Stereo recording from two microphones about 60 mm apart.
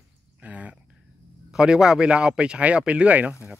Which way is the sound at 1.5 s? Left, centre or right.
Centre.